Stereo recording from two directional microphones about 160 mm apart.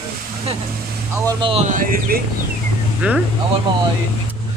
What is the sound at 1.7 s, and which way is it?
Speech, 60° right (ahead or behind).